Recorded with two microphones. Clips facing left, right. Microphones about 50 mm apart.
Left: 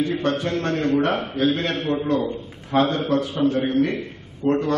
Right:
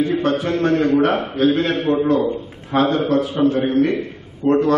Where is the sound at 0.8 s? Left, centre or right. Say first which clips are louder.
Right 4 dB; centre.